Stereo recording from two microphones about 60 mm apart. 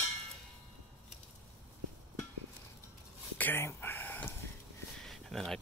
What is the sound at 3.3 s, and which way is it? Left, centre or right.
Speech, left.